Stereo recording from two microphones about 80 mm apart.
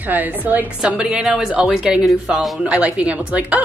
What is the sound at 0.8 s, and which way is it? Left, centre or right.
Speech, centre.